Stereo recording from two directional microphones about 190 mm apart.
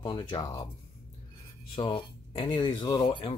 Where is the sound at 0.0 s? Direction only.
25° left (ahead or behind).